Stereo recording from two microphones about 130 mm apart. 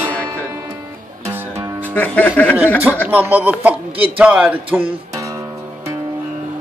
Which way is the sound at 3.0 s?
15° right (ahead or behind).